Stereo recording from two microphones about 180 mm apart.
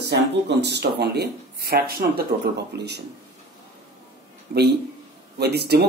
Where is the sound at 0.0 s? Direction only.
70° right (ahead or behind).